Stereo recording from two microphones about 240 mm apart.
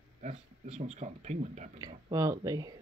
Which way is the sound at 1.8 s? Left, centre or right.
Centre.